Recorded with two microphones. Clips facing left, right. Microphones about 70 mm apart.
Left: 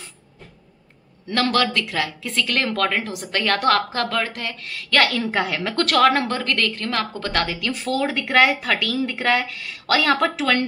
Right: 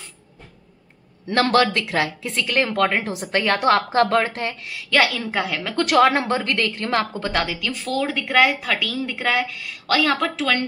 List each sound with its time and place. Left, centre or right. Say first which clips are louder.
1.3 s speech: right 3 dB; right
4.6 s a woman's voice: even; centre
5.9 s speech: right 1 dB; right
7.4 s speech: left 2 dB; centre